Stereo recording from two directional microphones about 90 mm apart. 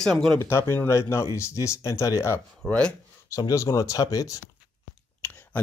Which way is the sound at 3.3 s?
35° left (ahead or behind).